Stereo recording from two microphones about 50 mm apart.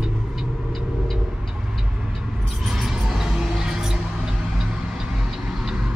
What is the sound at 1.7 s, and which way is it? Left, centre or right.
Vehicle, centre.